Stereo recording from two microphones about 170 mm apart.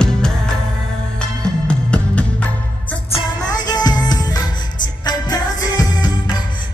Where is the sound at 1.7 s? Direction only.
5° left (ahead or behind).